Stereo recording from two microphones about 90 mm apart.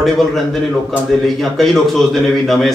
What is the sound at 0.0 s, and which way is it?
A man's voice, 5° left (ahead or behind).